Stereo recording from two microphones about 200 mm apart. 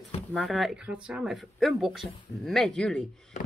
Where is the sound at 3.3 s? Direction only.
40° left (ahead or behind).